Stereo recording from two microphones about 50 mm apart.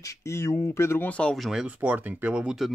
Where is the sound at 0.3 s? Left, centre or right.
Left.